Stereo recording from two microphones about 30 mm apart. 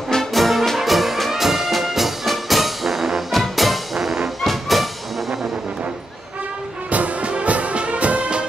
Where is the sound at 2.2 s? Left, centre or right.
Centre.